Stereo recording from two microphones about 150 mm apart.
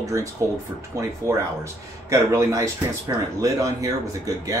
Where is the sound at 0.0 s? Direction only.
20° right (ahead or behind).